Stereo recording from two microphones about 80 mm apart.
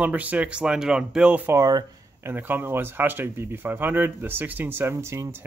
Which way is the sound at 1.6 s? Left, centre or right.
Right.